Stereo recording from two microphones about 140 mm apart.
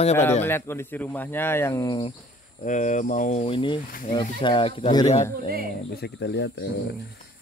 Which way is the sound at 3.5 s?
35° left (ahead or behind).